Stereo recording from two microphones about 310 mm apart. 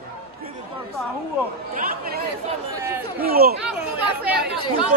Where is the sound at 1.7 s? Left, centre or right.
Right.